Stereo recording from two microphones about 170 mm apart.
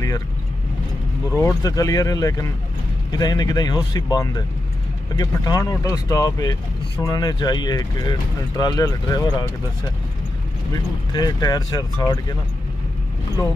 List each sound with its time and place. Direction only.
1.3 s speech: 20° left (ahead or behind)
10.7 s speech: 25° left (ahead or behind)